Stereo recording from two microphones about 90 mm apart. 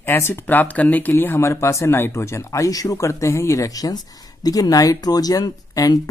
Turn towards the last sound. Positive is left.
turn(degrees=45)  # may be behind; listen again after turning